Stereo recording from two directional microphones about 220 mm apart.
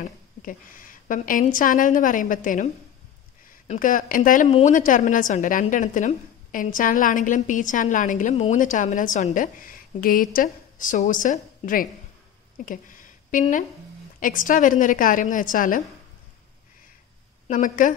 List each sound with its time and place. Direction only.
0.5 s a woman's voice: 40° left (ahead or behind)
17.5 s a woman's voice: 35° left (ahead or behind)